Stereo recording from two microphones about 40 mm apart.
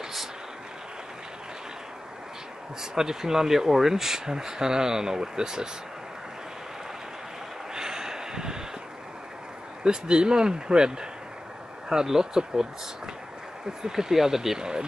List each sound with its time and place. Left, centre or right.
2.8 s speech: centre
7.7 s a sound: centre
9.8 s speech: right
14.6 s speech: right